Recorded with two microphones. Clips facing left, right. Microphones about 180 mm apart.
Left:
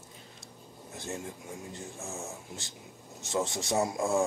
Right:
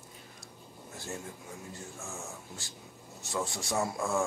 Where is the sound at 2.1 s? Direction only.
20° left (ahead or behind).